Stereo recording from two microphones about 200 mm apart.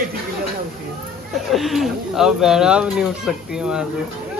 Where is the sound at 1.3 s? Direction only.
Centre (ahead or behind).